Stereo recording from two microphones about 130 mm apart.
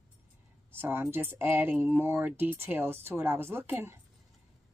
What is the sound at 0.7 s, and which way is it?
Speech, 15° right (ahead or behind).